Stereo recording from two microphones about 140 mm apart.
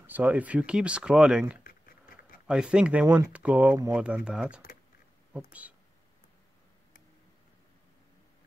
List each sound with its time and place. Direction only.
0.0 s speech: 10° right (ahead or behind)
1.6 s a sound: 90° left
2.4 s speech: 5° right (ahead or behind)